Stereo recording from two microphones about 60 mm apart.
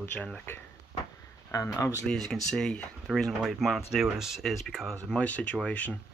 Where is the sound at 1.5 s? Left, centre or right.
Left.